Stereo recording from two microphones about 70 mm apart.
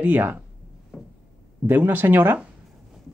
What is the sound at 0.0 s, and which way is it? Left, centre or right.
Speech, right.